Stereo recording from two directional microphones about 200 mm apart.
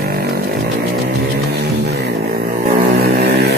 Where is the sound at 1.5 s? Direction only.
55° right (ahead or behind).